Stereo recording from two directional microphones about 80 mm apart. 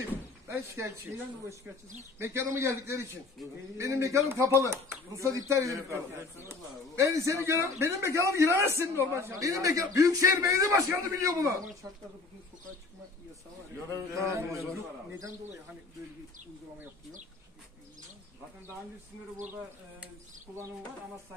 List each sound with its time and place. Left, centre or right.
0.5 s speech: right
2.1 s speech: right
13.8 s a man's voice: right